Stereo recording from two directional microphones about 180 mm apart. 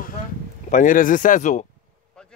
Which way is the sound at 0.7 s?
45° left (ahead or behind).